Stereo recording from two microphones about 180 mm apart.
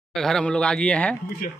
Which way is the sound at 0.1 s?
Centre (ahead or behind).